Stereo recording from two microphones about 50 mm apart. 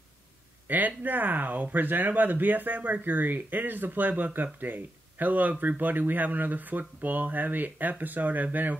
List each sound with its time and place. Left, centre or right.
0.7 s speech: right